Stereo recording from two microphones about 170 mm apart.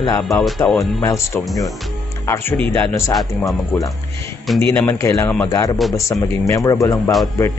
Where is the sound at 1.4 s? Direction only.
Centre (ahead or behind).